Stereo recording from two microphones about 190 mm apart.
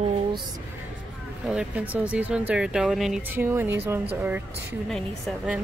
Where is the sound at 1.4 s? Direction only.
5° right (ahead or behind).